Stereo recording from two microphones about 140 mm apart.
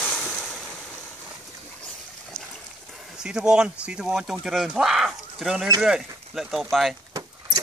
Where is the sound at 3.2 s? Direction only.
5° right (ahead or behind).